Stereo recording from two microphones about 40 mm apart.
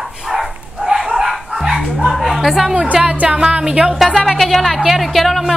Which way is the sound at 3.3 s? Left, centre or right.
Right.